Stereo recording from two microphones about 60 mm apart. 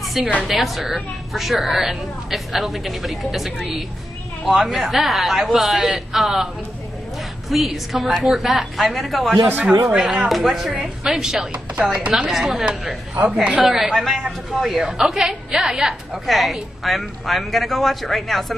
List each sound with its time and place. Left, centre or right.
0.0 s a sound: centre
0.4 s a woman's voice: centre
4.7 s a woman's voice: centre
11.5 s speech: right
12.3 s a woman's voice: centre
13.2 s speech: centre
13.6 s a woman's voice: centre